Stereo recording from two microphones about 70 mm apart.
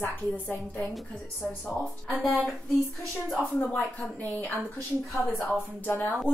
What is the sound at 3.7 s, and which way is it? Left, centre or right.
Speech, centre.